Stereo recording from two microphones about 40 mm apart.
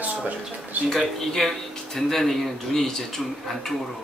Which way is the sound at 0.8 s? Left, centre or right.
Centre.